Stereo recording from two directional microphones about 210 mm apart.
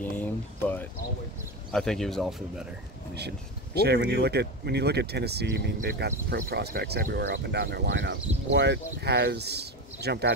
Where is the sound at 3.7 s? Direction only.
50° right (ahead or behind).